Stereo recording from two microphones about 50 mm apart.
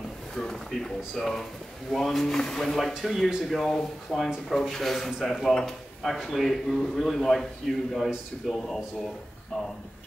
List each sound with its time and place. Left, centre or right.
0.4 s speech: centre
3.0 s a man's voice: centre